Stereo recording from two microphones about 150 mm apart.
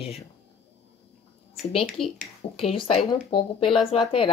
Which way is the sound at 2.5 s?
40° left (ahead or behind).